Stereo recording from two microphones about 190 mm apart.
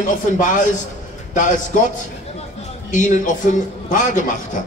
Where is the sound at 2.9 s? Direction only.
40° left (ahead or behind).